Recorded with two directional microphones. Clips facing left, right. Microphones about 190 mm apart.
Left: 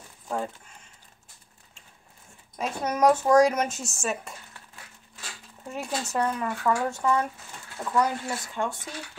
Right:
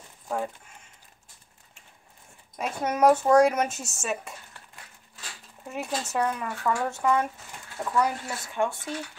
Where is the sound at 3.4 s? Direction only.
5° right (ahead or behind).